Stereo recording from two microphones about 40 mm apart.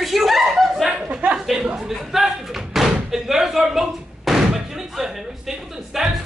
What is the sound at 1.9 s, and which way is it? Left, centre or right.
Slam, centre.